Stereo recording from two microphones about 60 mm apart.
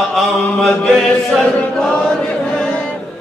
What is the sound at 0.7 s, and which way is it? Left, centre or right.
Chant, centre.